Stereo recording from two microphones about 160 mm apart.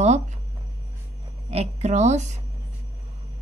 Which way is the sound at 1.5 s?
40° right (ahead or behind).